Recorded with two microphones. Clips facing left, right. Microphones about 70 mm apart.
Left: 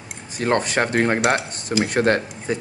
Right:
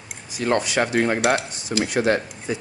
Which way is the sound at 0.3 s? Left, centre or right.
Left.